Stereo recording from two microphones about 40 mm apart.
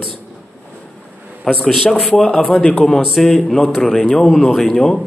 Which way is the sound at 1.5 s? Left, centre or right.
Centre.